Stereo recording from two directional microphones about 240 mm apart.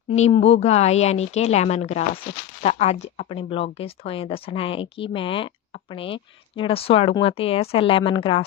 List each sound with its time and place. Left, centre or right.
0.1 s speech: left